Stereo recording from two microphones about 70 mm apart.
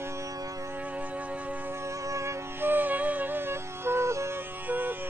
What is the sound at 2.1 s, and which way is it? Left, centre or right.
Music, right.